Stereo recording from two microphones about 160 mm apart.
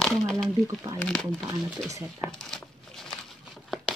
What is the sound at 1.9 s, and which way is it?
Speech, 20° right (ahead or behind).